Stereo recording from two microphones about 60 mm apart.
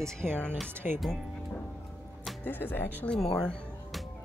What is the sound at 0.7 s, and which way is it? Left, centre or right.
Speech, right.